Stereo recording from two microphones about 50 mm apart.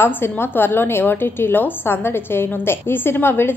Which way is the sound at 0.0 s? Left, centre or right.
Left.